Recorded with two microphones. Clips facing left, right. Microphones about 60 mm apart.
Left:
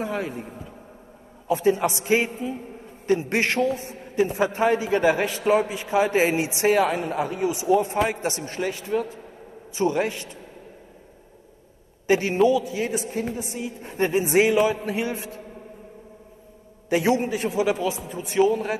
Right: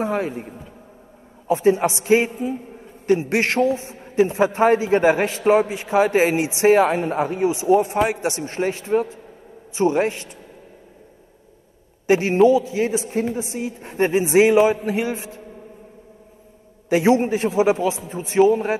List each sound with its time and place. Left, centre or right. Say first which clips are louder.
0.0 s a man's voice: right 5 dB; right
1.5 s a man's voice: right 4 dB; right
4.0 s a sound: right 5 dB; right
4.6 s a man's voice: right 5 dB; right
7.8 s a man's voice: right 3 dB; centre
12.1 s a man's voice: right 4 dB; right
17.1 s a man's voice: right 5 dB; right